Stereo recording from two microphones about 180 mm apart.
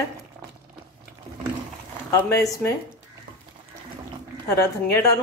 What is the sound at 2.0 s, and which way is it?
Speech, 15° left (ahead or behind).